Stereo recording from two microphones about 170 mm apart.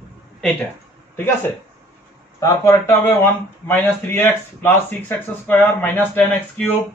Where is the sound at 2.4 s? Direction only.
20° left (ahead or behind).